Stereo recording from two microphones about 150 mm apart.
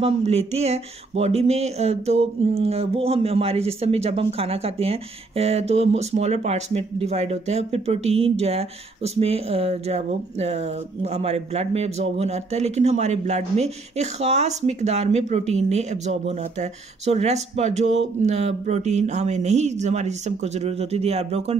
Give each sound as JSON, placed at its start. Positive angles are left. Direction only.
{"t": 0.0, "sound": "speech", "side_deg": -45}